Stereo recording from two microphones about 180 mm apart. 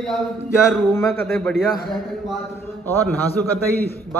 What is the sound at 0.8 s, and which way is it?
Speech, 10° left (ahead or behind).